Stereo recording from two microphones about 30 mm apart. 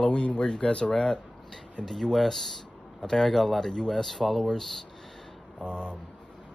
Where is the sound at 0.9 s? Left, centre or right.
Left.